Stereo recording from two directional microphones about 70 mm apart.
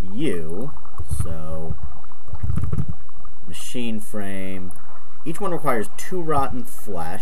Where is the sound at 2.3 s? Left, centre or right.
Centre.